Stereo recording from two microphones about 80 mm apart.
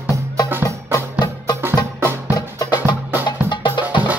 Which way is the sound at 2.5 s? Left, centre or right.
Left.